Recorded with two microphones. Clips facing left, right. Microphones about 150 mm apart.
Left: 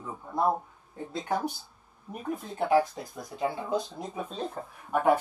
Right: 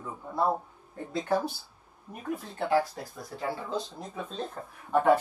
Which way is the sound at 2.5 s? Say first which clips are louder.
Left 3 dB; 15° left (ahead or behind).